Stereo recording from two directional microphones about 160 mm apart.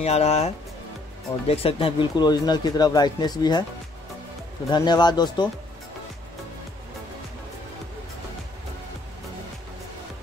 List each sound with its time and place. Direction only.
0.0 s speech: 40° left (ahead or behind)
1.5 s speech: 35° left (ahead or behind)
4.6 s speech: 25° left (ahead or behind)